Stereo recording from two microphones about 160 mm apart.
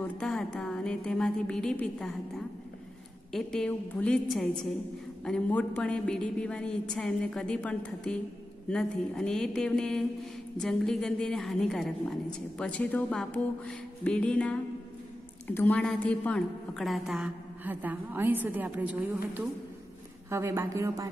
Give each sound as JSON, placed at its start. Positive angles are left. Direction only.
{"t": 0.0, "sound": "a woman's voice", "side_deg": 5}
{"t": 20.2, "sound": "speech", "side_deg": -15}